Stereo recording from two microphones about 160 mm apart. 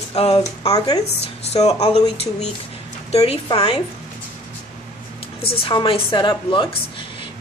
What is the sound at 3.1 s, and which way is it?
Speech, 40° left (ahead or behind).